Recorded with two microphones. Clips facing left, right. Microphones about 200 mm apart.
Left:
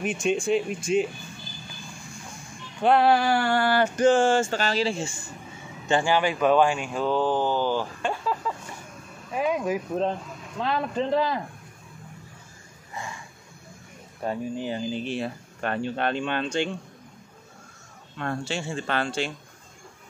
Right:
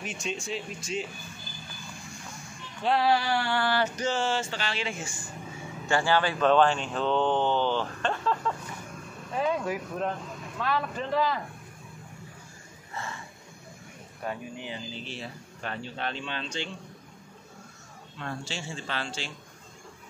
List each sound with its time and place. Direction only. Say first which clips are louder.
0.0 s a sound: left 10 dB; 55° left (ahead or behind)
0.5 s speech: left 11 dB; 55° left (ahead or behind)
2.8 s a sound: left 5 dB; 55° left (ahead or behind); by 5.3 s 25° left (ahead or behind)
5.9 s speech: left 3 dB; 15° left (ahead or behind)
14.2 s speech: left 7 dB; 30° left (ahead or behind)
14.7 s speech: left 10 dB; 55° left (ahead or behind)
18.1 s speech: left 7 dB; 60° left (ahead or behind)